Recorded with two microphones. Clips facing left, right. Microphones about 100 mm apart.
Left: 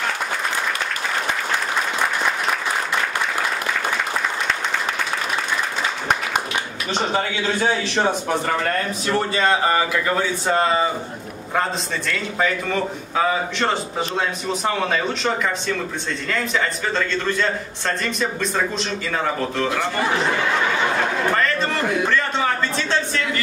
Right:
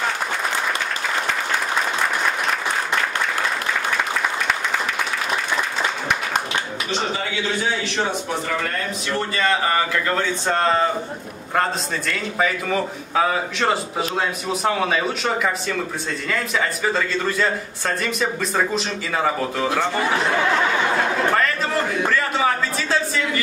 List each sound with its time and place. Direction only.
9.3 s a man's voice: 25° left (ahead or behind)
9.9 s a man's voice: 10° left (ahead or behind); by 19.8 s 10° right (ahead or behind)
21.4 s a sound: 5° right (ahead or behind)